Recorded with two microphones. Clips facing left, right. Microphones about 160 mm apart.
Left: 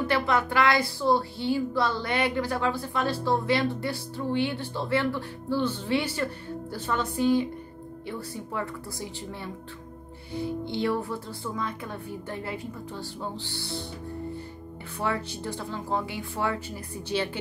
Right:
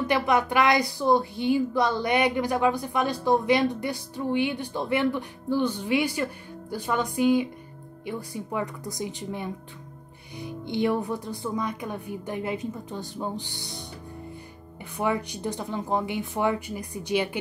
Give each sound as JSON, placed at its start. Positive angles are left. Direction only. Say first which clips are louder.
{"t": 0.0, "sound": "a woman's voice", "louder": "right 2 dB", "side_deg": -15}
{"t": 15.0, "sound": "a woman's voice", "louder": "right 3 dB", "side_deg": -15}